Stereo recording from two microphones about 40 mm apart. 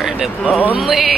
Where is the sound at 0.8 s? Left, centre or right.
Centre.